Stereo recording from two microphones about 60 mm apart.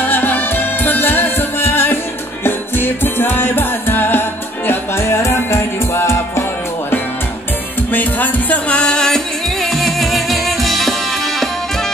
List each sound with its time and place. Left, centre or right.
0.0 s music: left
7.9 s music: left; by 11.4 s centre